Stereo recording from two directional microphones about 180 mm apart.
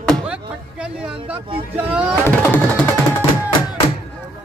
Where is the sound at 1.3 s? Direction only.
10° right (ahead or behind).